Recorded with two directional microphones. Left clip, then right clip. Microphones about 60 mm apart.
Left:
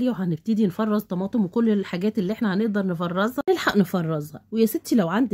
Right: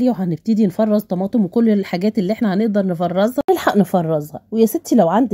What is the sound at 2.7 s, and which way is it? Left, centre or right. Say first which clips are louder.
Speech: right 8 dB; right.